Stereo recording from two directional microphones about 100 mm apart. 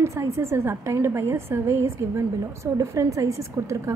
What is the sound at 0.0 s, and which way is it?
A woman's voice, 30° right (ahead or behind).